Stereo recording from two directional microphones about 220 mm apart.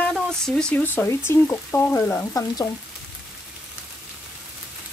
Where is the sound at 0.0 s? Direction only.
5° left (ahead or behind).